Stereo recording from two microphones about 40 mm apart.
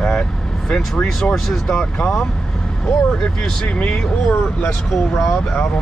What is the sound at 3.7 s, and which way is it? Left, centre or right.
Speech, left.